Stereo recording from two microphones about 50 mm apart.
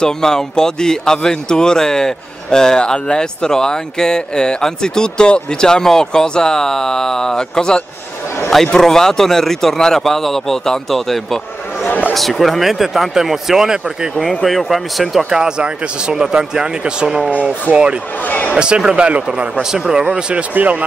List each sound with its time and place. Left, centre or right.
0.0 s a man's voice: centre
14.1 s a man's voice: centre
14.4 s speech: centre
15.2 s speech: centre
18.2 s a man's voice: left
18.6 s speech: centre
20.5 s speech: right